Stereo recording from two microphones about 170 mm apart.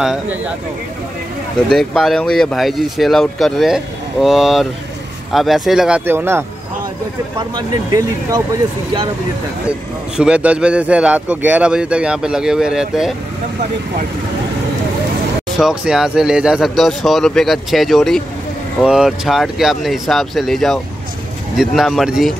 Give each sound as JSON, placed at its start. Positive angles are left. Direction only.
{"t": 0.0, "sound": "a man's voice", "side_deg": -5}
{"t": 1.7, "sound": "a man's voice", "side_deg": 0}
{"t": 9.7, "sound": "a man's voice", "side_deg": -5}
{"t": 15.5, "sound": "a man's voice", "side_deg": -5}